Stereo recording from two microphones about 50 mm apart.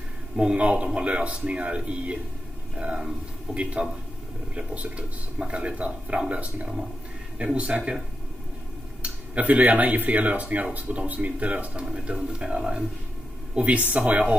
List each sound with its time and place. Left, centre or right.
0.4 s speech: right
3.5 s a man's voice: centre
4.6 s speech: right
9.0 s speech: right
13.6 s speech: right